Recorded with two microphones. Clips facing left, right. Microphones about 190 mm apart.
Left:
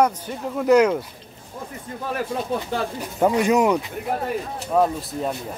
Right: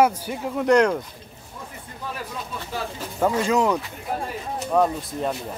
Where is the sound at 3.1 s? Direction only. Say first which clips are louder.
Left 3 dB; 15° left (ahead or behind).